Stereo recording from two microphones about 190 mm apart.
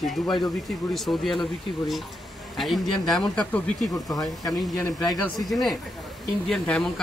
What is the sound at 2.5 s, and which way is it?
Speech, centre (ahead or behind).